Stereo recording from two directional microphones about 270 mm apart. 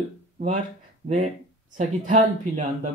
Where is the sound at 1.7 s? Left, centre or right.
Right.